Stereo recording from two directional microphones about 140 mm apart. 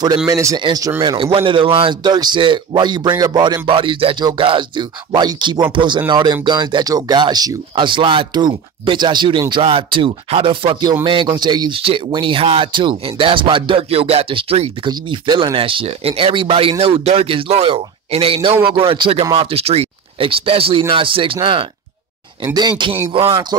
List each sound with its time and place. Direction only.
0.3 s speech: 25° right (ahead or behind)
1.1 s speech: 40° right (ahead or behind)